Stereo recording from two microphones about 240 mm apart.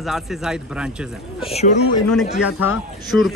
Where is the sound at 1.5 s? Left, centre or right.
Left.